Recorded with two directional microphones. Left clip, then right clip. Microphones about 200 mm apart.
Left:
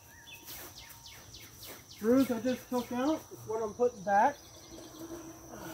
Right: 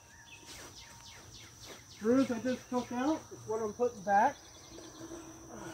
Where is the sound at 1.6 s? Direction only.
45° left (ahead or behind).